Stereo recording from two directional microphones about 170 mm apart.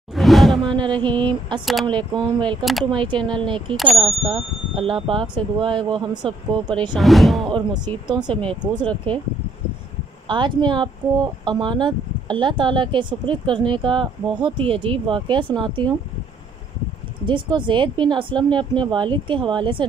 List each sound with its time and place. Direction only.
0.1 s music: centre (ahead or behind)
0.7 s speech: 25° right (ahead or behind)
3.7 s speech: centre (ahead or behind)
4.3 s speech: 30° right (ahead or behind)
7.0 s speech: centre (ahead or behind)
7.4 s speech: 25° right (ahead or behind)
8.8 s speech: 10° left (ahead or behind)
10.2 s speech: 25° right (ahead or behind)
17.3 s speech: 30° right (ahead or behind)